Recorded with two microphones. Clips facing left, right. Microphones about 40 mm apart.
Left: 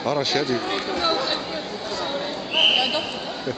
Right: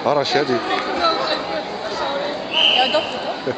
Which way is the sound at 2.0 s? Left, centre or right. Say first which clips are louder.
Right 5 dB; centre.